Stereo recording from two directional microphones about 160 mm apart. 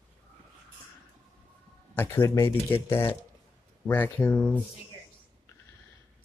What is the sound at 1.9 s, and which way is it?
Speech, 15° left (ahead or behind).